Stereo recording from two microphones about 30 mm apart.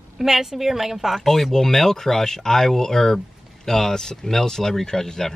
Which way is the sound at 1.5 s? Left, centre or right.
Centre.